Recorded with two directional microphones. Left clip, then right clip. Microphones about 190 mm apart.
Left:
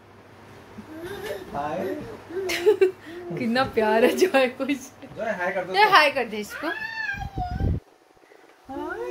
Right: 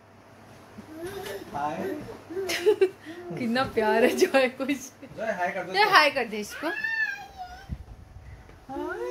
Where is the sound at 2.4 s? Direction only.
Centre (ahead or behind).